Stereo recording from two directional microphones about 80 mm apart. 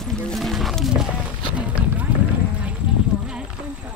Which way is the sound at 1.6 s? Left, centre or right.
Centre.